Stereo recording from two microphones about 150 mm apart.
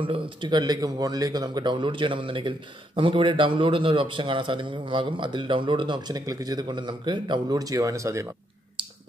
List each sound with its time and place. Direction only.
0.0 s a man's voice: 35° right (ahead or behind)